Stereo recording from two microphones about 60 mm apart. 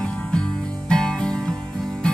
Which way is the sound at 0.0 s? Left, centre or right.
Centre.